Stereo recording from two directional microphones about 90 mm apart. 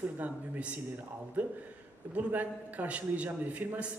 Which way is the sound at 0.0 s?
15° right (ahead or behind).